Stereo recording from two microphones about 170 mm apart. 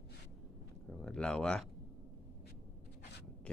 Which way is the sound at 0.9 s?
5° left (ahead or behind).